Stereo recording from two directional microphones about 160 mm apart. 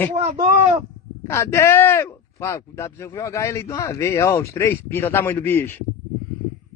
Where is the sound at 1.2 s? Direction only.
15° left (ahead or behind).